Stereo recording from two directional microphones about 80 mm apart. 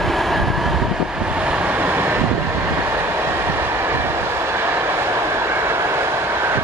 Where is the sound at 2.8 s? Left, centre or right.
Right.